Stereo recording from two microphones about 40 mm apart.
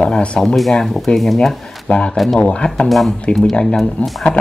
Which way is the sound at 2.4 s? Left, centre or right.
Left.